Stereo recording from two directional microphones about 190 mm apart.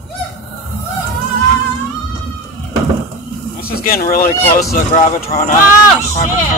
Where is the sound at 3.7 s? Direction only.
50° left (ahead or behind).